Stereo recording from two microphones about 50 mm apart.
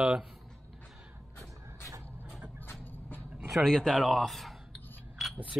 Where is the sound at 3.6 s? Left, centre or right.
Centre.